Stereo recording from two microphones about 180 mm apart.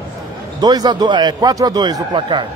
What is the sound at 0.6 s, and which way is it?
Speech, 20° right (ahead or behind).